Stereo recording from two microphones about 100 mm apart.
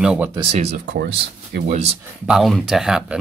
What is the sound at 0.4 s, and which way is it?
Speech, 90° right.